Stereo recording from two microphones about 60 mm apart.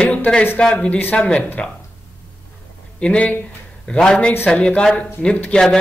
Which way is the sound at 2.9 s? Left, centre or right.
Centre.